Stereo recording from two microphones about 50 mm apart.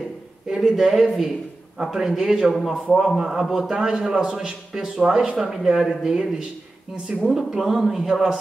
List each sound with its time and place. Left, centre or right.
0.7 s a man's voice: centre